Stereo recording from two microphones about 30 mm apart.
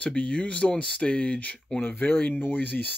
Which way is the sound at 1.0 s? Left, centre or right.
Left.